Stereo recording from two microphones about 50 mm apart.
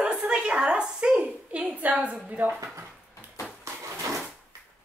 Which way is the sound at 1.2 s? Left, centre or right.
Right.